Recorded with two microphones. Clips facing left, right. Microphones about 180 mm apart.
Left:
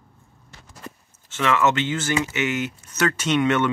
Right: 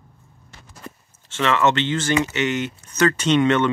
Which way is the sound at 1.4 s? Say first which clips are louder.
Right 1 dB; 5° left (ahead or behind).